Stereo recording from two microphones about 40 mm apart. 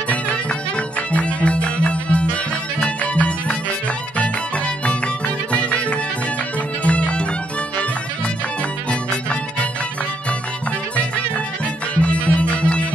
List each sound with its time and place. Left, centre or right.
0.1 s music: left
9.1 s music: left
11.0 s music: left